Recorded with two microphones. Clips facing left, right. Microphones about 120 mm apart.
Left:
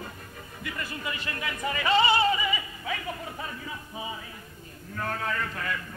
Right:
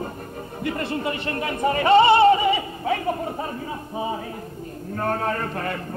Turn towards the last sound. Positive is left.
turn(degrees=-40)  # may be behind; listen again after turning